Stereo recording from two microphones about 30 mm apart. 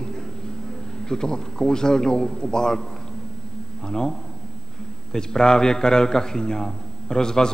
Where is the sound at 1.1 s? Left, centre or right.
Left.